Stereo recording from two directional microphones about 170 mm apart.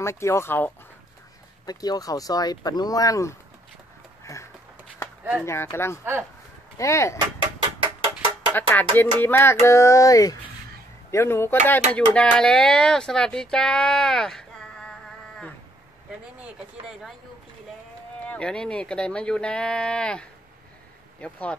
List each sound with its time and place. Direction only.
0.0 s speech: 15° left (ahead or behind)
1.7 s speech: 20° left (ahead or behind)
4.2 s a sound: 15° left (ahead or behind)
5.4 s speech: 15° left (ahead or behind)
7.8 s a sound: 30° right (ahead or behind)
8.5 s speech: 10° left (ahead or behind)
18.2 s speech: 5° left (ahead or behind)